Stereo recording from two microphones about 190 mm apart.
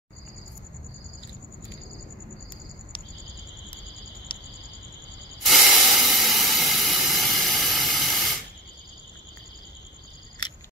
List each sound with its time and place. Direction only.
4.3 s cricket: 25° left (ahead or behind)
5.4 s hiss: centre (ahead or behind)